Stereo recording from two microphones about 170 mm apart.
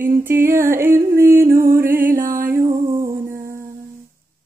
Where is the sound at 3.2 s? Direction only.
15° right (ahead or behind).